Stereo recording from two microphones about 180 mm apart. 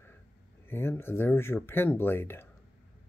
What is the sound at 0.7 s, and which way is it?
Speech, 10° left (ahead or behind).